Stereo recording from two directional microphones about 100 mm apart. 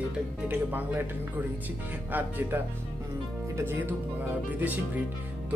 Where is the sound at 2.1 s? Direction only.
20° right (ahead or behind).